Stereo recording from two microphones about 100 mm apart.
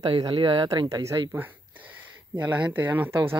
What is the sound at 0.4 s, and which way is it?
Speech, 60° right (ahead or behind).